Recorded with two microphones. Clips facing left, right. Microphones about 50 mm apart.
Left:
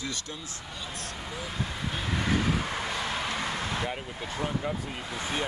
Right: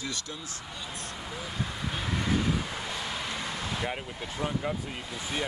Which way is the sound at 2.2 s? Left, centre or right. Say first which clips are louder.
Left 1 dB; left.